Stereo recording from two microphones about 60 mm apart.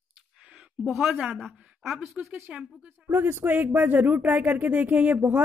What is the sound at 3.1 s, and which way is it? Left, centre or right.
Speech, right.